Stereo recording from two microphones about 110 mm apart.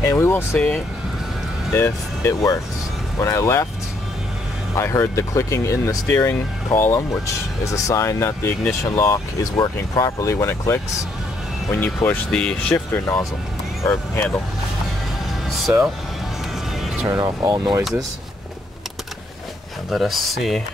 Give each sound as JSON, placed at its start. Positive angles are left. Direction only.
{"t": 0.0, "sound": "speech", "side_deg": 25}
{"t": 4.7, "sound": "speech", "side_deg": 25}
{"t": 12.3, "sound": "speech", "side_deg": 5}
{"t": 12.7, "sound": "speech", "side_deg": 20}
{"t": 15.7, "sound": "speech", "side_deg": -15}
{"t": 16.8, "sound": "music", "side_deg": -5}
{"t": 17.1, "sound": "speech", "side_deg": -35}
{"t": 19.9, "sound": "speech", "side_deg": 0}